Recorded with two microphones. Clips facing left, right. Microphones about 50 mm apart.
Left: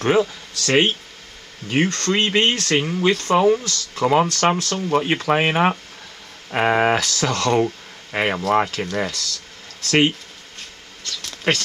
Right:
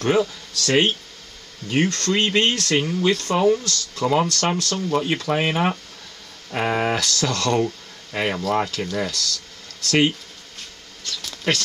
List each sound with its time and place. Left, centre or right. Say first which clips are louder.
0.0 s speech: left 2 dB; centre
8.1 s speech: left 3 dB; left
11.5 s speech: left 2 dB; left